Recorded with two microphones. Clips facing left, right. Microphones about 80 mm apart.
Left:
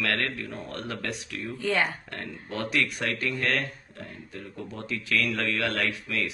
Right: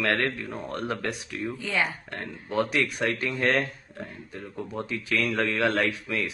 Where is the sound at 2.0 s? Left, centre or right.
Right.